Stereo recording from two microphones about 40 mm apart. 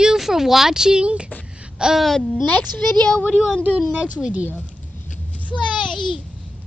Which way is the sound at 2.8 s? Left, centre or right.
Left.